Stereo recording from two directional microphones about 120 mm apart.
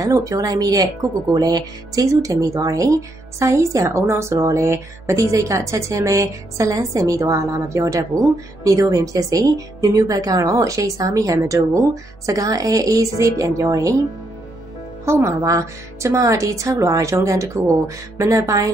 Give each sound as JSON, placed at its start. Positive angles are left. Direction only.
{"t": 0.0, "sound": "speech", "side_deg": -30}
{"t": 15.0, "sound": "speech", "side_deg": -25}